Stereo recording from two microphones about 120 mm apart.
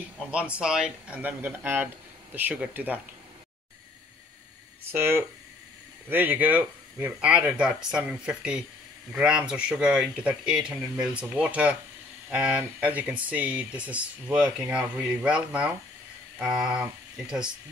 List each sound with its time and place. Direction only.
0.3 s speech: 10° right (ahead or behind)
4.9 s speech: 20° right (ahead or behind)
16.3 s a sound: 5° right (ahead or behind)
16.8 s speech: 5° right (ahead or behind)